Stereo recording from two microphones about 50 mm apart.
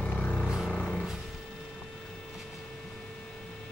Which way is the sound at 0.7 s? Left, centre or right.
Left.